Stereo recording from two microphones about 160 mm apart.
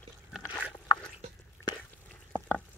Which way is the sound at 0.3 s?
5° right (ahead or behind).